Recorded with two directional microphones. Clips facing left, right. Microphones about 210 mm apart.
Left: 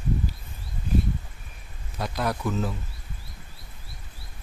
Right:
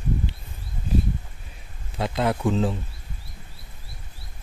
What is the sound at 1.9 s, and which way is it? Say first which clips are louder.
Speech: right 4 dB; 25° right (ahead or behind).